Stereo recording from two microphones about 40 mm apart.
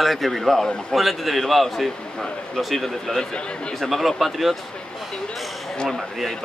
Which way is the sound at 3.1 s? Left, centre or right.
Centre.